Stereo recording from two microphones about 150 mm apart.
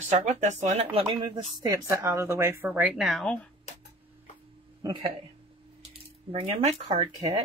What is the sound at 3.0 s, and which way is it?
Speech, centre (ahead or behind).